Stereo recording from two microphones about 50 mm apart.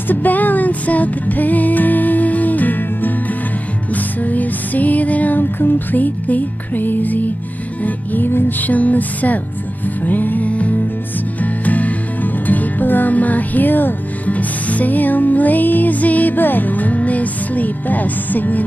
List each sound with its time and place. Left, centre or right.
0.1 s music: left